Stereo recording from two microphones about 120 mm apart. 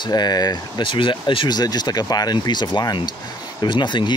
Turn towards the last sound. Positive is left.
turn(degrees=40)  # may be behind; listen again after turning